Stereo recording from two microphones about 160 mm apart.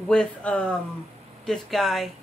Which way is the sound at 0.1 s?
5° left (ahead or behind).